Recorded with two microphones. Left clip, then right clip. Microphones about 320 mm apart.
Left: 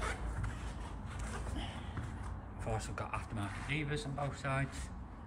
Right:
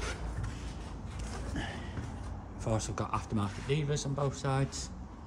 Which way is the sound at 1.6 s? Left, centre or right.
Right.